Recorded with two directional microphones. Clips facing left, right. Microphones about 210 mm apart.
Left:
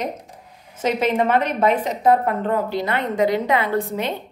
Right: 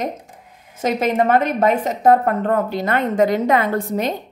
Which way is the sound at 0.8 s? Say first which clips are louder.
Right 2 dB; 45° right (ahead or behind).